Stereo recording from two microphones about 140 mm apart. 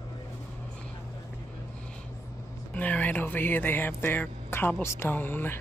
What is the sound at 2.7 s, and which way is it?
Speech, 10° left (ahead or behind).